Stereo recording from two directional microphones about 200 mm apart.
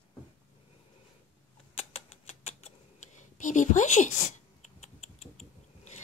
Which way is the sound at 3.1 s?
40° left (ahead or behind).